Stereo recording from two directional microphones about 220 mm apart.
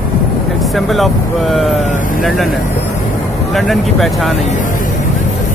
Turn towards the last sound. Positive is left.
turn(degrees=30)  # may be behind; listen again after turning